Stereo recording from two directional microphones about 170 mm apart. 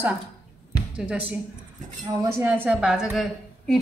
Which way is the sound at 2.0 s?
25° right (ahead or behind).